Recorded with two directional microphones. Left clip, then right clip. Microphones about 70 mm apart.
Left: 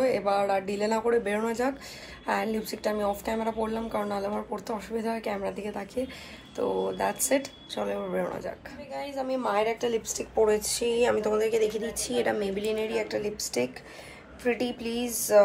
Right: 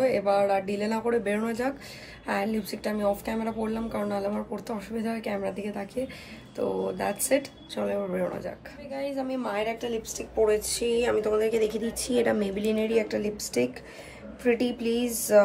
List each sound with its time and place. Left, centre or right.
0.0 s a woman's voice: right
9.8 s speech: centre
10.4 s a woman's voice: centre; by 15.4 s right